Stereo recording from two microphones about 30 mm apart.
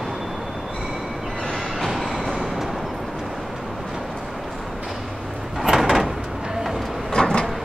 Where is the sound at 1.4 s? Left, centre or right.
Centre.